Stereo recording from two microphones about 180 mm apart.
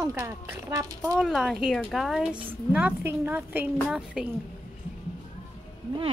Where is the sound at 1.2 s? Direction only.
5° right (ahead or behind).